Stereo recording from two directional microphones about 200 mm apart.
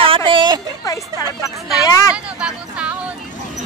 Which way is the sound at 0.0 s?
25° right (ahead or behind).